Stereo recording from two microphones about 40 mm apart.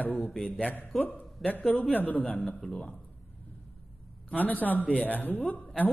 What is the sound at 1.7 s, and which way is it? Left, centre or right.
Speech, left.